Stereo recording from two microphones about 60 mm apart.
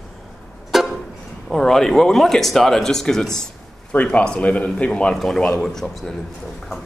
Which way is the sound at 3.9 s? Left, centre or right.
Left.